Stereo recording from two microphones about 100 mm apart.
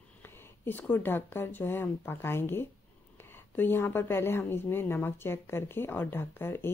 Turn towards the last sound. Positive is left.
turn(degrees=20)  # may be behind; listen again after turning